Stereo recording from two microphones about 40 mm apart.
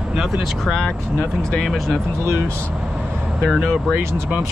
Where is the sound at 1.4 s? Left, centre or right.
Centre.